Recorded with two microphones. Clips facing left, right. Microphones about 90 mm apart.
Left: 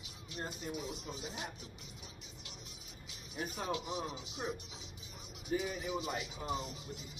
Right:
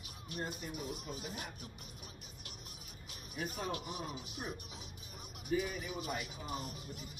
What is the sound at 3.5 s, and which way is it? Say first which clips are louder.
Speech: left 5 dB; 50° right (ahead or behind).